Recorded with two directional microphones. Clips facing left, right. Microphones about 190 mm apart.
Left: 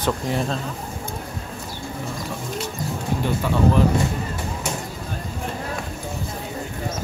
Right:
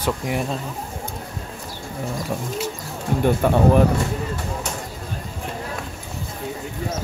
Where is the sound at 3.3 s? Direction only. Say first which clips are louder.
Right 4 dB; 55° right (ahead or behind).